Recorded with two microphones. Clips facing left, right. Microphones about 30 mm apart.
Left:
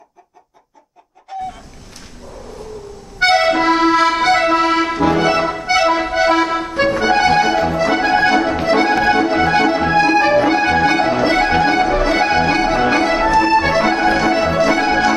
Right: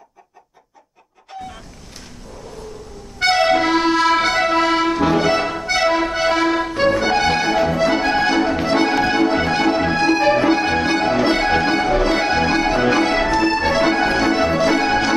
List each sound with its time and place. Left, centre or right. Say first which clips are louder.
3.2 s accordion: left 2 dB; centre
6.7 s music: left 2 dB; centre
10.5 s music: left 2 dB; left
10.8 s music: left 3 dB; centre